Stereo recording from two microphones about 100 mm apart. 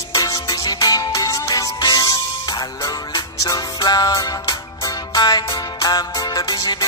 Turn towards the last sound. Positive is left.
turn(degrees=40)  # may be behind; listen again after turning